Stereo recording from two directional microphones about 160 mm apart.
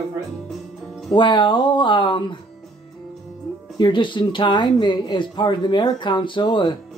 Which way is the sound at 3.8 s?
30° left (ahead or behind).